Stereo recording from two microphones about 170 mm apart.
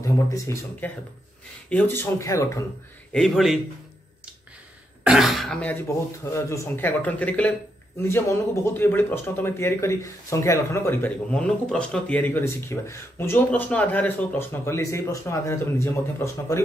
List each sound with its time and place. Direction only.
0.0 s a man's voice: 15° left (ahead or behind)
3.1 s speech: centre (ahead or behind)
5.0 s a man's voice: 5° right (ahead or behind); by 16.6 s 15° left (ahead or behind)